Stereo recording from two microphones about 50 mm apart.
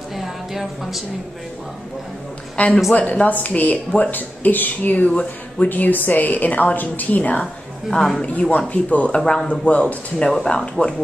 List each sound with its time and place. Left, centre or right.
0.1 s music: centre
2.5 s a man's voice: left
5.7 s speech: left; by 11.0 s centre